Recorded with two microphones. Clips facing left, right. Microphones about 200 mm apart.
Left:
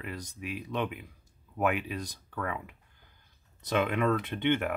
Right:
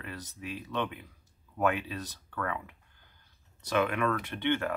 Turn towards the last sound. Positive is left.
turn(degrees=20)  # may be behind; listen again after turning